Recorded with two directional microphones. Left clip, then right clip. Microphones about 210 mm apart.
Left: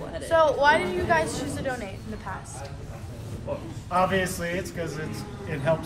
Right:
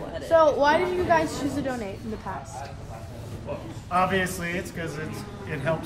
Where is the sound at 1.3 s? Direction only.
40° left (ahead or behind).